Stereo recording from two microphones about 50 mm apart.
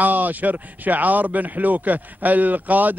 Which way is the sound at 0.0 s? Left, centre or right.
Right.